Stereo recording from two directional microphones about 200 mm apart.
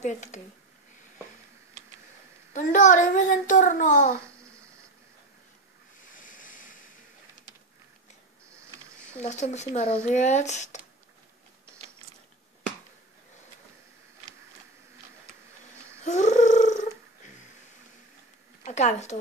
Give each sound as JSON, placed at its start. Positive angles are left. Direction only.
{"t": 0.0, "sound": "a child's voice", "side_deg": 35}
{"t": 2.5, "sound": "a child's voice", "side_deg": 40}
{"t": 6.0, "sound": "ocean", "side_deg": 40}
{"t": 9.2, "sound": "a child's voice", "side_deg": 35}
{"t": 16.1, "sound": "a sound", "side_deg": 35}
{"t": 18.6, "sound": "speech", "side_deg": 35}